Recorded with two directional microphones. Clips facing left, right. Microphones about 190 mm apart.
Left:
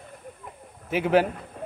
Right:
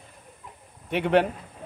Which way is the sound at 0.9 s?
Centre (ahead or behind).